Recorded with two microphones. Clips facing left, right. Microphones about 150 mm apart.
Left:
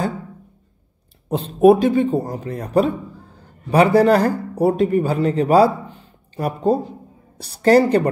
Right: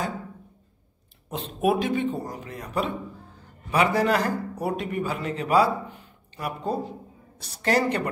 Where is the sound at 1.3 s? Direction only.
35° left (ahead or behind).